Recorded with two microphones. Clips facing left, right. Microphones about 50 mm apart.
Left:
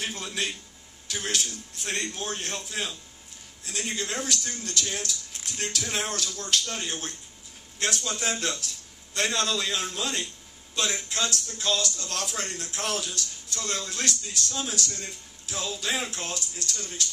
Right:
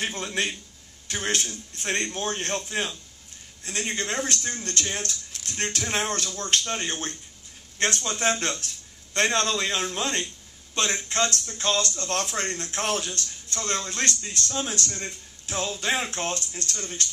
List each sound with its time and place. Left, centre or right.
0.0 s a man's voice: right